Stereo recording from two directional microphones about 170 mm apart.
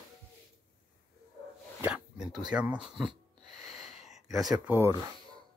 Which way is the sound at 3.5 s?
Centre (ahead or behind).